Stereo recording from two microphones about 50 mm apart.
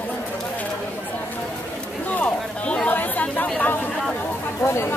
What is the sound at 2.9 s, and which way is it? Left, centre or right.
Chatter, left.